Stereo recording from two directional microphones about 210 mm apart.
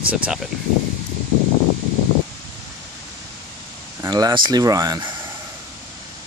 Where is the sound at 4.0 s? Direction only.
20° right (ahead or behind).